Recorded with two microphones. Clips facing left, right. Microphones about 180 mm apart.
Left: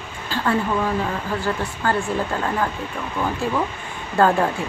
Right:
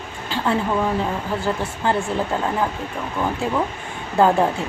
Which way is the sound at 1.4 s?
25° right (ahead or behind).